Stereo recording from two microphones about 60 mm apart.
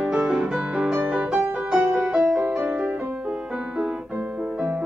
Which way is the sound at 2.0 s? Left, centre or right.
Centre.